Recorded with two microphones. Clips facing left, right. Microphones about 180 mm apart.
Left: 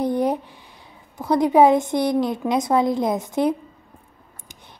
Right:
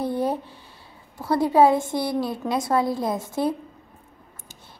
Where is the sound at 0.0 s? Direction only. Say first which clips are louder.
Left 3 dB; 15° left (ahead or behind).